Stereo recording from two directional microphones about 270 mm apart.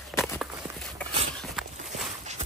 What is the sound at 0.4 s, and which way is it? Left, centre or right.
Walk, centre.